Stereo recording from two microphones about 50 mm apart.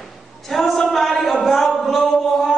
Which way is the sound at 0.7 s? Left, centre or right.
Centre.